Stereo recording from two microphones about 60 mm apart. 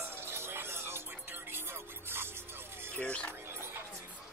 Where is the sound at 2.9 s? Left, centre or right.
Centre.